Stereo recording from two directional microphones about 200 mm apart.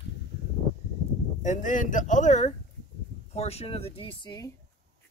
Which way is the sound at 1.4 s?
40° left (ahead or behind).